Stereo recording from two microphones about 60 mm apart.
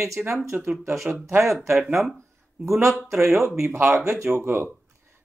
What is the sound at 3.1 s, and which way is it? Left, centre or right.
Speech, centre.